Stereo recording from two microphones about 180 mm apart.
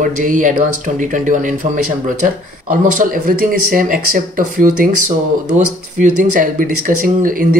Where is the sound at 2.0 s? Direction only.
50° right (ahead or behind).